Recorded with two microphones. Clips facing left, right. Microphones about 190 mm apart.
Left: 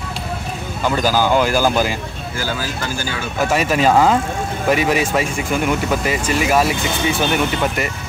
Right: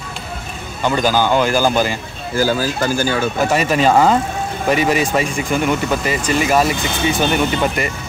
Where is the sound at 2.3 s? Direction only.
40° right (ahead or behind).